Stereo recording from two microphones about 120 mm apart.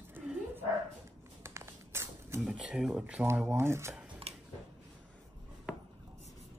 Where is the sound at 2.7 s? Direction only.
5° right (ahead or behind).